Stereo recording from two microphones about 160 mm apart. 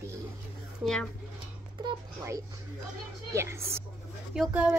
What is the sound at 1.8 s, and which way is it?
A woman's voice, 25° right (ahead or behind).